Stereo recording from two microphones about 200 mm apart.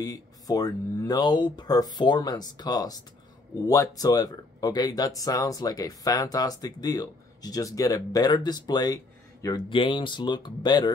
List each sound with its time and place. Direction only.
0.0 s speech: 20° left (ahead or behind)